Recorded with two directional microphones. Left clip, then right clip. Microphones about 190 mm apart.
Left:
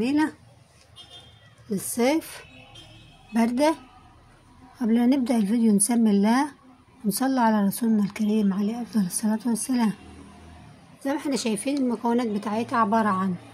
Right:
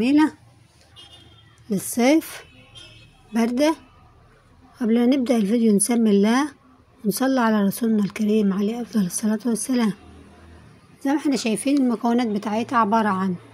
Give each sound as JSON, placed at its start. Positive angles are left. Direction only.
{"t": 0.0, "sound": "speech", "side_deg": -20}
{"t": 1.7, "sound": "speech", "side_deg": -20}
{"t": 3.3, "sound": "speech", "side_deg": -5}
{"t": 11.0, "sound": "speech", "side_deg": -15}